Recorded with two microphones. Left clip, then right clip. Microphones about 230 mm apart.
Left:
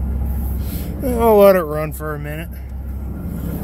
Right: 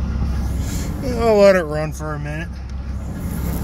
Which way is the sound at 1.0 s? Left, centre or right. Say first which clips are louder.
Left 2 dB; centre.